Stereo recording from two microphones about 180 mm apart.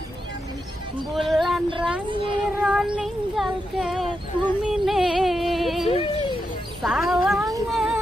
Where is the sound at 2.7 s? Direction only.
5° right (ahead or behind).